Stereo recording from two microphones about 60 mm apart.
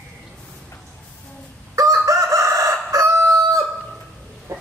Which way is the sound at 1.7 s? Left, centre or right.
Right.